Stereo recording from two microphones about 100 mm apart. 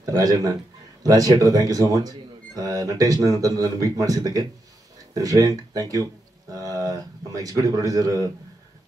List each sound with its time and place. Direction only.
0.0 s speech: 35° right (ahead or behind)